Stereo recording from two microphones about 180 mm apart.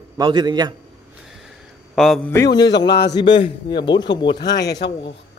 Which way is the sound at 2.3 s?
20° left (ahead or behind).